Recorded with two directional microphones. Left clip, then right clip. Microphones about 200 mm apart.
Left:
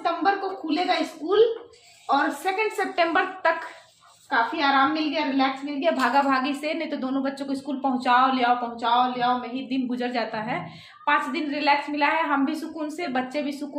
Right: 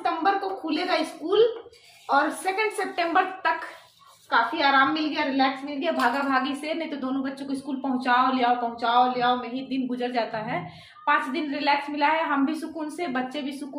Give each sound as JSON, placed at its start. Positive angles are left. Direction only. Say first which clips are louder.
{"t": 0.0, "sound": "a sound", "louder": "even", "side_deg": 10}
{"t": 2.0, "sound": "a woman's voice", "louder": "even", "side_deg": 10}
{"t": 4.6, "sound": "a woman's voice", "louder": "even", "side_deg": 15}